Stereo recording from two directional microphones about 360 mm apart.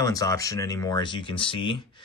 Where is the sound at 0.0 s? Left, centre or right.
Centre.